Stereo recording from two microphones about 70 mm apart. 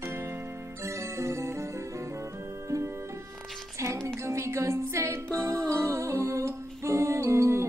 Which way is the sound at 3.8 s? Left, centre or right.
Right.